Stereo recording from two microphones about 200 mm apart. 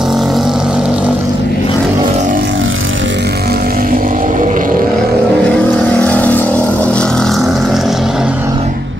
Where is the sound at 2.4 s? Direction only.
75° right (ahead or behind); by 4.8 s 40° right (ahead or behind).